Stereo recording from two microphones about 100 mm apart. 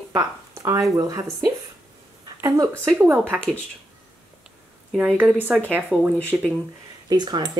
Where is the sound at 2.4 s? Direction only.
35° right (ahead or behind).